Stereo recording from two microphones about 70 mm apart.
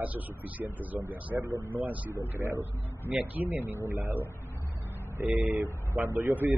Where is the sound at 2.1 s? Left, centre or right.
Right.